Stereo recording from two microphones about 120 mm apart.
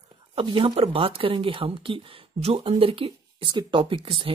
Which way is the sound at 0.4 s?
45° right (ahead or behind).